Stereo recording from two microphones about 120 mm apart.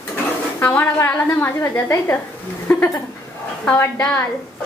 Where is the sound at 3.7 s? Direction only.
20° left (ahead or behind).